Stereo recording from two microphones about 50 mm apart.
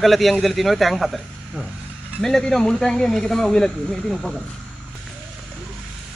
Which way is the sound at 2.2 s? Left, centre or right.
Centre.